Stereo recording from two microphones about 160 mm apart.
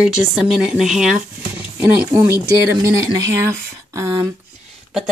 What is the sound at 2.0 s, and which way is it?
Speech, 20° right (ahead or behind).